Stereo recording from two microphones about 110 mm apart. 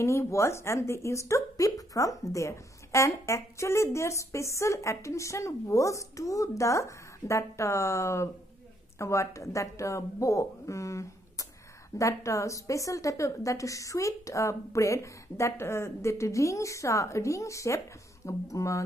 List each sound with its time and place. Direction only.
0.0 s speech: 25° left (ahead or behind)